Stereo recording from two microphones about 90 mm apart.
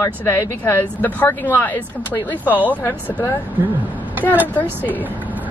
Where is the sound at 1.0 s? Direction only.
20° left (ahead or behind).